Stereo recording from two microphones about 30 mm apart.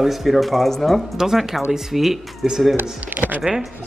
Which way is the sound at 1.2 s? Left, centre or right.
Centre.